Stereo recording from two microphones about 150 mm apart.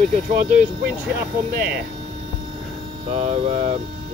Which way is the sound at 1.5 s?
90° right.